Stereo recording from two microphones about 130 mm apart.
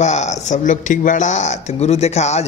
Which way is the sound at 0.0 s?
60° left (ahead or behind).